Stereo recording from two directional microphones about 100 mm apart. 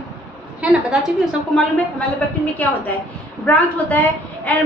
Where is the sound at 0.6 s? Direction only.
15° right (ahead or behind).